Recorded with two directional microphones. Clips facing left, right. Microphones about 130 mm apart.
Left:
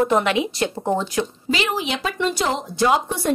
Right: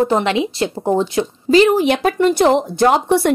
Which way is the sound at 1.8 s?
55° right (ahead or behind).